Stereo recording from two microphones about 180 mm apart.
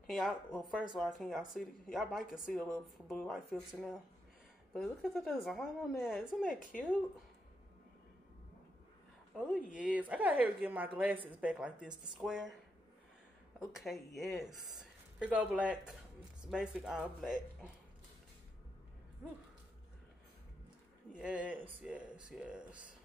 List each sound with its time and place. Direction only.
0.0 s speech: centre (ahead or behind)
9.3 s speech: centre (ahead or behind)
13.7 s speech: centre (ahead or behind)
21.1 s speech: 5° right (ahead or behind)